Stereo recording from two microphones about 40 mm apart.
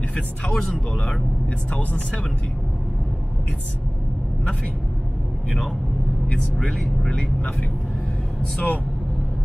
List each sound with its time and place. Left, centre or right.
0.5 s speech: centre
1.7 s speech: left
6.6 s speech: centre
8.4 s speech: left